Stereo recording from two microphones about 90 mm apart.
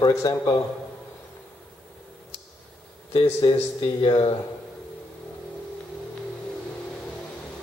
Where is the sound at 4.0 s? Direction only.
90° left.